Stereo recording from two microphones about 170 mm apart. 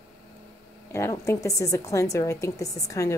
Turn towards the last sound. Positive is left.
turn(degrees=20)  # may be behind; listen again after turning